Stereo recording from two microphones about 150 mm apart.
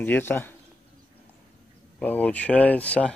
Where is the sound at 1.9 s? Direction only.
10° left (ahead or behind).